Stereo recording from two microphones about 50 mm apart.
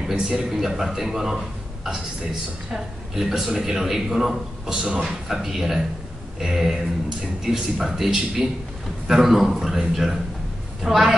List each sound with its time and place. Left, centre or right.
0.0 s speech: centre
2.7 s speech: centre
7.4 s speech: centre